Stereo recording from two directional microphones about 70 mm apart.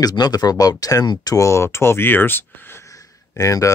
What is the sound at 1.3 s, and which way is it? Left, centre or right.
Speech, left.